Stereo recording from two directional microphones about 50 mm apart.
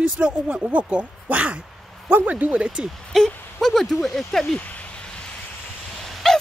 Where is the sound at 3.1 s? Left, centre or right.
Centre.